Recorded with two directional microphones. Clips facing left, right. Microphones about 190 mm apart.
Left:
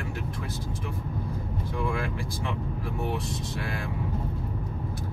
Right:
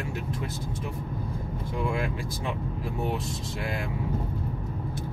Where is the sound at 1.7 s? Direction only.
25° right (ahead or behind).